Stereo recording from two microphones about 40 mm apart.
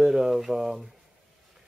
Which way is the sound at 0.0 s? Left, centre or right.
Centre.